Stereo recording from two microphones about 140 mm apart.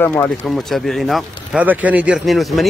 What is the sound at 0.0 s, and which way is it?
Speech, 15° left (ahead or behind).